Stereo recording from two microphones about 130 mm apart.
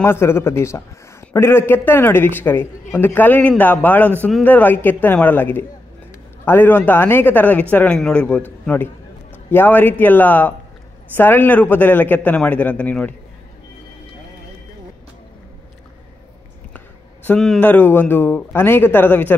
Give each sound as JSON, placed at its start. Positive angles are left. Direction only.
{"t": 0.0, "sound": "a man's voice", "side_deg": 20}
{"t": 17.4, "sound": "speech", "side_deg": 0}
{"t": 17.6, "sound": "a man's voice", "side_deg": 15}